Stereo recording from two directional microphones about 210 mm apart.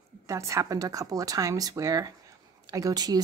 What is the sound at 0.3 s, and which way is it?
A woman's voice, 15° right (ahead or behind).